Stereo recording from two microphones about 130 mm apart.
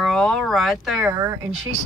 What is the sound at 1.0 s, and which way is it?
Speech, 25° right (ahead or behind).